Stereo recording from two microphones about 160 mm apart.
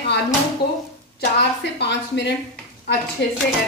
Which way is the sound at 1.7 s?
90° left.